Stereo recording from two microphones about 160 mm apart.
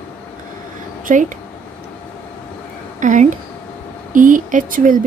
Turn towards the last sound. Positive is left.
turn(degrees=-55)  # may be behind; listen again after turning